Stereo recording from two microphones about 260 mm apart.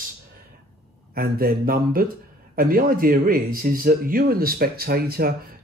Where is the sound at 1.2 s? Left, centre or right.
Right.